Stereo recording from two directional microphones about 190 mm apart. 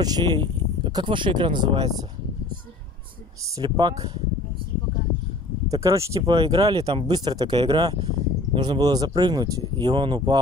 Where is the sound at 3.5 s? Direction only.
20° right (ahead or behind).